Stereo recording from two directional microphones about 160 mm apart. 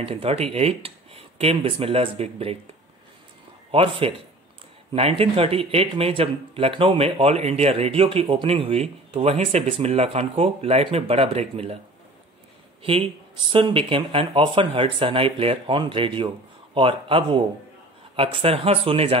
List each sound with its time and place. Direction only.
0.0 s speech: 35° right (ahead or behind)
3.7 s speech: 35° right (ahead or behind)
12.8 s speech: 35° right (ahead or behind)